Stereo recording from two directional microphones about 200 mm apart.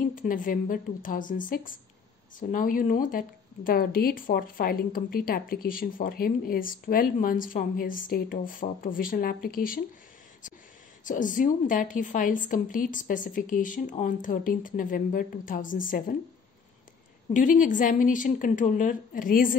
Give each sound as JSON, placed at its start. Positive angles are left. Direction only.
{"t": 0.1, "sound": "speech", "side_deg": 45}
{"t": 11.1, "sound": "a woman's voice", "side_deg": 40}
{"t": 17.3, "sound": "a woman's voice", "side_deg": 40}